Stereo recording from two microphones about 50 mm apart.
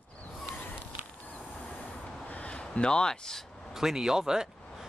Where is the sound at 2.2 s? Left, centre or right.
Left; by 3.4 s centre.